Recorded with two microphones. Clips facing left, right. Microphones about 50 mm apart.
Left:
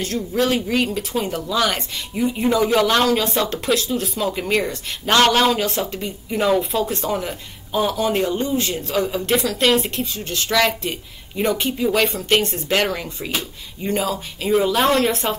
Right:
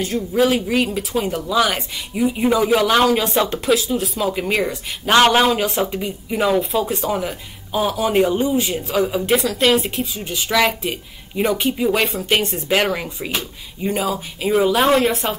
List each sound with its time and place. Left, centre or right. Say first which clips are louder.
0.0 s speech: right 3 dB; centre